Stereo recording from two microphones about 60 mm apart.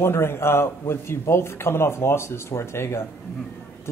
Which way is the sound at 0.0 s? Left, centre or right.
Left.